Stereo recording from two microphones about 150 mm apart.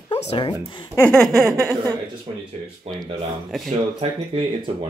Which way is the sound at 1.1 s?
5° left (ahead or behind).